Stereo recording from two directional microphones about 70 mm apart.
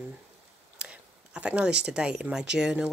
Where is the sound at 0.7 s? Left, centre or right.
Centre.